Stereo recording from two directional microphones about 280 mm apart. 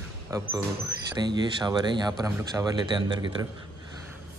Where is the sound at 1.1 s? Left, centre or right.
Centre.